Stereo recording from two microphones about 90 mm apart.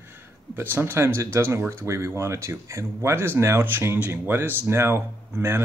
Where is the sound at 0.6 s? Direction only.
25° right (ahead or behind).